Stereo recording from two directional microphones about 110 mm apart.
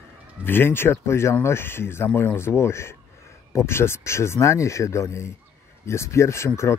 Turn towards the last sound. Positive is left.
turn(degrees=25)  # may be behind; listen again after turning